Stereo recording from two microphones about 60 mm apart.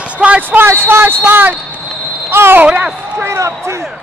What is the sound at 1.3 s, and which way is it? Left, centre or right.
Speech, right.